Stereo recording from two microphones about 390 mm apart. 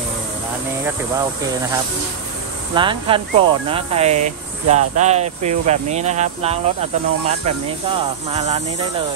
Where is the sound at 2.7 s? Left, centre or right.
Centre.